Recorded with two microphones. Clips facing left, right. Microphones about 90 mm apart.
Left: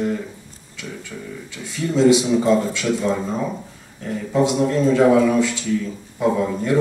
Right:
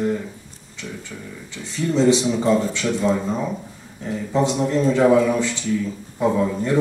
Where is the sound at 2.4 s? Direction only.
15° right (ahead or behind).